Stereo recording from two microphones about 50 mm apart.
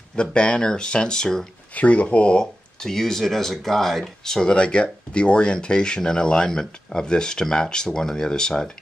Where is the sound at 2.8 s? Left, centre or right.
Centre.